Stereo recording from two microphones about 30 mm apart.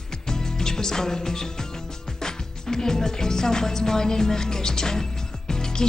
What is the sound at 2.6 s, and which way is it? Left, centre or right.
Music, centre.